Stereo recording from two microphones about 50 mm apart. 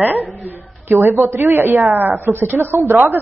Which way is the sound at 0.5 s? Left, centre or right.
Right.